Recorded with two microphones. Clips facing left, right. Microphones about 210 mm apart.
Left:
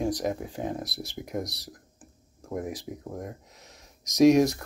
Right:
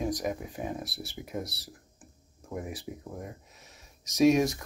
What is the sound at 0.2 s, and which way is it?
Speech, 35° left (ahead or behind).